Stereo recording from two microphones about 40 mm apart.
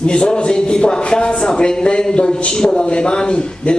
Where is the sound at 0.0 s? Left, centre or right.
Left.